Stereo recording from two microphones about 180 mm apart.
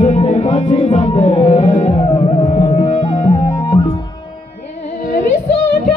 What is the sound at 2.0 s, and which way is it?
Music, 25° left (ahead or behind).